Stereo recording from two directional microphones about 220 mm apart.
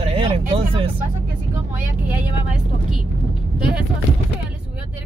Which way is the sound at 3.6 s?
5° right (ahead or behind).